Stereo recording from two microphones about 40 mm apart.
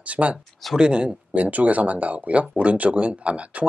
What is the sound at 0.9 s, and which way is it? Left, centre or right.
Speech, right.